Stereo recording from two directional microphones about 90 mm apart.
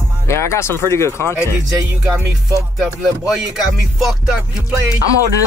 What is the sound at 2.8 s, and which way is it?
Music, 5° right (ahead or behind).